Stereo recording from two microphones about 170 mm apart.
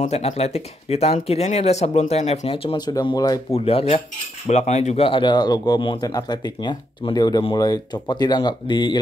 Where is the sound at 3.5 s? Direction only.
35° left (ahead or behind).